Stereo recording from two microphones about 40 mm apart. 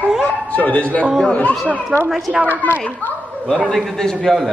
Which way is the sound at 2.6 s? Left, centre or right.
Left.